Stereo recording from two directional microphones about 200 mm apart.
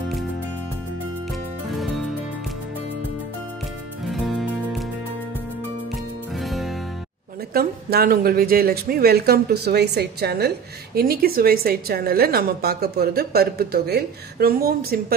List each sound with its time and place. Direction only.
1.7 s music: centre (ahead or behind)
4.0 s music: centre (ahead or behind)
6.3 s music: centre (ahead or behind)
7.5 s a woman's voice: 50° right (ahead or behind)